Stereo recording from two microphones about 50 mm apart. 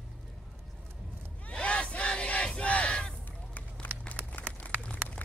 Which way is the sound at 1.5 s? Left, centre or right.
Left.